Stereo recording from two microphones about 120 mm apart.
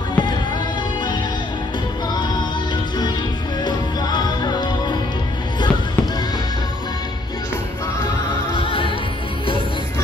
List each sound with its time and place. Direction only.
0.1 s music: 40° left (ahead or behind)
3.6 s music: 35° left (ahead or behind)
8.5 s music: 45° left (ahead or behind)